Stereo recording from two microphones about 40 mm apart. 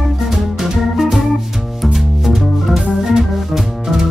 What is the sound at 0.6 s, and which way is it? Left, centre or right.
Music, centre.